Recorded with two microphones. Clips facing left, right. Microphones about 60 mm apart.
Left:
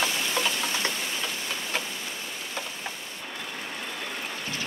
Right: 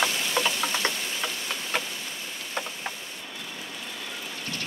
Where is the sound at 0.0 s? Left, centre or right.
Centre.